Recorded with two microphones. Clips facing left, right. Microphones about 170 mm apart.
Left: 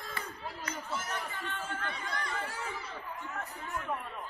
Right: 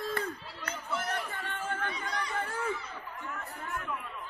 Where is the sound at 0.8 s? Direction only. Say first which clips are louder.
Right 6 dB; 60° right (ahead or behind).